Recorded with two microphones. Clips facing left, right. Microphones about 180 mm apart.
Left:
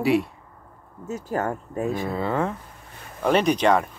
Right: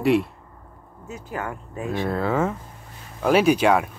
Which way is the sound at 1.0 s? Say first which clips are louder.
Left 5 dB; 40° left (ahead or behind).